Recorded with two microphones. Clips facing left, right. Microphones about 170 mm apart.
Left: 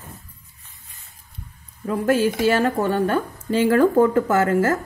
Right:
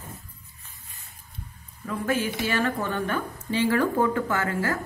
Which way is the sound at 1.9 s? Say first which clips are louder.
Left 7 dB; 35° left (ahead or behind).